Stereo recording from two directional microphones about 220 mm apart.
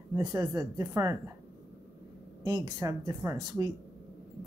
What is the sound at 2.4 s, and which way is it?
Speech, 20° right (ahead or behind).